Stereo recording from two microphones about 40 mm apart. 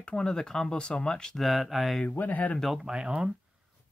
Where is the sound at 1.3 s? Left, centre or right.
Centre.